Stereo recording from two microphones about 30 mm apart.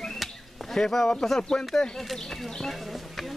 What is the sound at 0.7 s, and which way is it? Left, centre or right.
Speech, centre.